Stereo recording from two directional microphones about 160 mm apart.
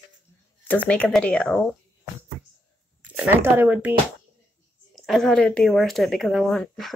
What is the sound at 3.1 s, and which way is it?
Speech, 10° right (ahead or behind).